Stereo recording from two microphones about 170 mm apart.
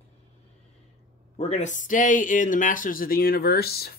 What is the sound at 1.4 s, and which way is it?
Speech, 40° left (ahead or behind).